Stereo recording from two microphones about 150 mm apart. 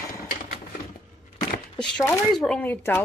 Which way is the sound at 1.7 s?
5° left (ahead or behind).